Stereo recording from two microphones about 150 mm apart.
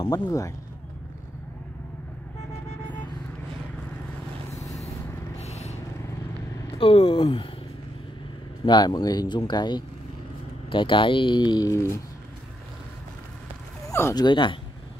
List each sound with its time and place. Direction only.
0.1 s speech: 20° left (ahead or behind)
5.4 s vehicle: 45° left (ahead or behind)
6.8 s speech: 40° left (ahead or behind)
8.6 s speech: 30° left (ahead or behind)
13.8 s speech: 20° left (ahead or behind)
14.2 s speech: 30° left (ahead or behind)